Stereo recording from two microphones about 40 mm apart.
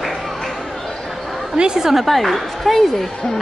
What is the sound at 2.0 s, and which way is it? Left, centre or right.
Speech, centre.